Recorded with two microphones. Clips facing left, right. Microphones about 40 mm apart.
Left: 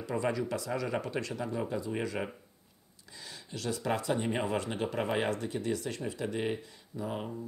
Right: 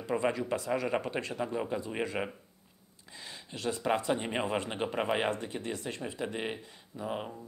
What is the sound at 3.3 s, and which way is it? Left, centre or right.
Speech, right.